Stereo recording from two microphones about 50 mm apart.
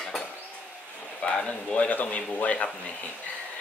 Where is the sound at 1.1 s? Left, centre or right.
Centre.